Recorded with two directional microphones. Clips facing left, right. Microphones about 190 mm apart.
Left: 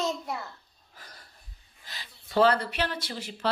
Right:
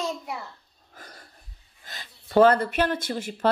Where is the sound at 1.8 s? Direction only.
50° right (ahead or behind).